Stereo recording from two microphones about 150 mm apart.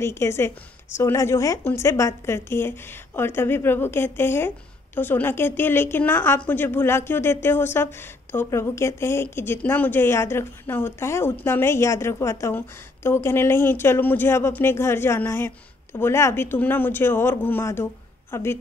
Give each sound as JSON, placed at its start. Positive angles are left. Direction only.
{"t": 0.0, "sound": "a woman's voice", "side_deg": 15}